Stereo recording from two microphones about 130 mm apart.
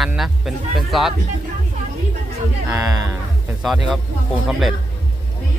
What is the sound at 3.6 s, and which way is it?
Speech, 5° right (ahead or behind).